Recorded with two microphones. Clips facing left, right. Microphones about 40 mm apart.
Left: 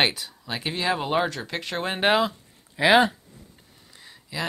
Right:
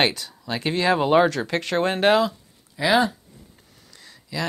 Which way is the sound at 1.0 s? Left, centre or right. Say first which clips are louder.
Right 9 dB; centre.